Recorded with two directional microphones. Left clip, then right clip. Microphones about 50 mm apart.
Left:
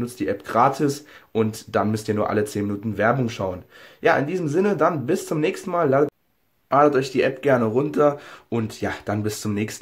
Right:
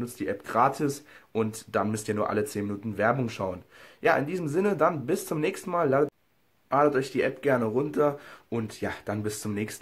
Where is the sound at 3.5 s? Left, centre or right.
Right.